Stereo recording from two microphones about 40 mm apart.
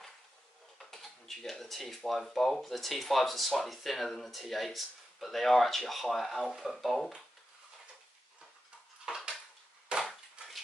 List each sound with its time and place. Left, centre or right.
0.7 s speech: centre
9.1 s dishes: right
9.9 s splinter: right